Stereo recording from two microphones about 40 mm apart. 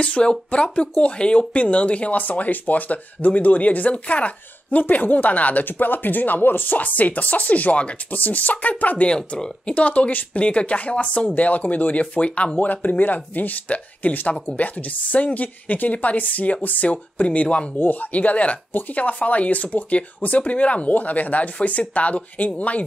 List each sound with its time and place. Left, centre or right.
0.0 s speech: left
9.1 s speech: left
12.5 s speech: left